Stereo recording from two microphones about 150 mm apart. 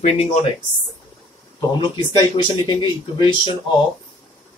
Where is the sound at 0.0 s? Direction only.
45° left (ahead or behind).